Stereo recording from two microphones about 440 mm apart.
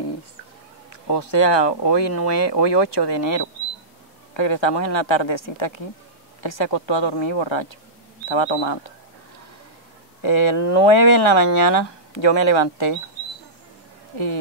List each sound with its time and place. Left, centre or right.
1.1 s speech: left
4.3 s speech: left
10.2 s speech: left
14.1 s speech: left